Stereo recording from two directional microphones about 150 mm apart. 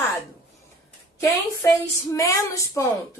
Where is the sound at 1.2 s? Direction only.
20° left (ahead or behind).